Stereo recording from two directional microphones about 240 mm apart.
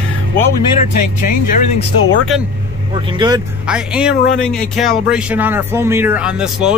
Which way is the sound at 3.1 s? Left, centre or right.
Centre.